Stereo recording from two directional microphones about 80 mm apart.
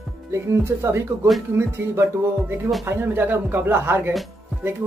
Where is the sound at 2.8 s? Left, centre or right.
Right.